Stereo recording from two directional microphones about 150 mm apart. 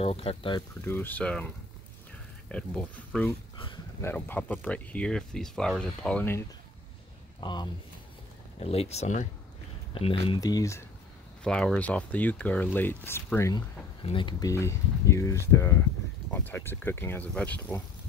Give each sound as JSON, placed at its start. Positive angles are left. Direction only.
{"t": 0.0, "sound": "speech", "side_deg": 40}
{"t": 0.6, "sound": "speech", "side_deg": 15}
{"t": 2.5, "sound": "speech", "side_deg": 5}
{"t": 3.5, "sound": "a sound", "side_deg": 35}
{"t": 4.0, "sound": "speech", "side_deg": 15}
{"t": 7.3, "sound": "speech", "side_deg": 30}
{"t": 8.5, "sound": "speech", "side_deg": 45}
{"t": 9.9, "sound": "speech", "side_deg": 40}
{"t": 10.4, "sound": "speech", "side_deg": 20}
{"t": 11.4, "sound": "speech", "side_deg": 5}
{"t": 14.0, "sound": "speech", "side_deg": 30}
{"t": 14.5, "sound": "speech", "side_deg": 20}